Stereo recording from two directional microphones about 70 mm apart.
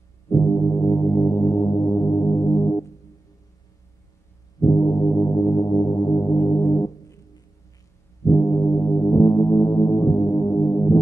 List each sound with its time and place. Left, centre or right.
0.3 s music: left
4.6 s music: left
8.3 s music: left